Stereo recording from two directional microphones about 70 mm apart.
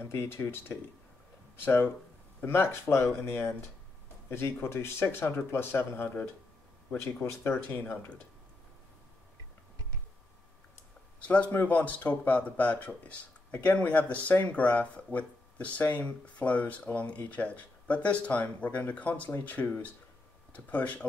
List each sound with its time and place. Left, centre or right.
0.0 s speech: left
11.1 s a sound: centre
11.5 s speech: left